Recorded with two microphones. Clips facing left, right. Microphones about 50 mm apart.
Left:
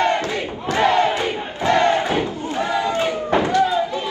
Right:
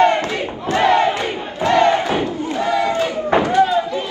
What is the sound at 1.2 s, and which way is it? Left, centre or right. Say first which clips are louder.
Crowd: right 1 dB; right.